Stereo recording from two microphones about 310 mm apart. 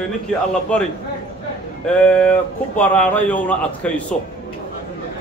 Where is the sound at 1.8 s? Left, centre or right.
Centre.